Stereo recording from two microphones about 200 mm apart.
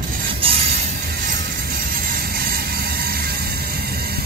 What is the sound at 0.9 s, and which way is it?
Music, 50° right (ahead or behind).